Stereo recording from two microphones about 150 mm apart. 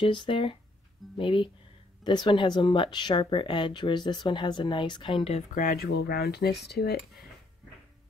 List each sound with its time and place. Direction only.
0.0 s speech: 35° left (ahead or behind)
5.5 s speech: 70° left (ahead or behind); by 7.0 s 90° left